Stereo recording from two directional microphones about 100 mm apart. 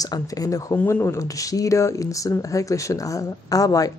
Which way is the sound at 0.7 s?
25° left (ahead or behind).